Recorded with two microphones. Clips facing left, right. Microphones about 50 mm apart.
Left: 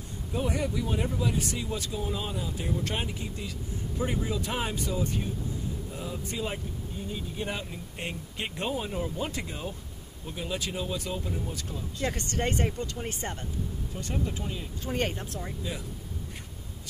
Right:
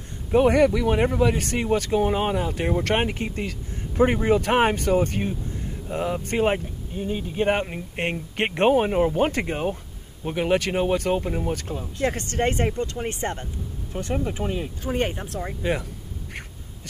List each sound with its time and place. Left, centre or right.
0.3 s speech: right
14.9 s speech: centre
15.2 s speech: right